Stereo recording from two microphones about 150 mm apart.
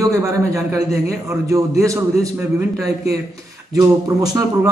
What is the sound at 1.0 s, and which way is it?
A man's voice, 20° right (ahead or behind).